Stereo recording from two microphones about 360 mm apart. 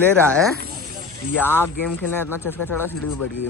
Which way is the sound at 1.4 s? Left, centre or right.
Centre.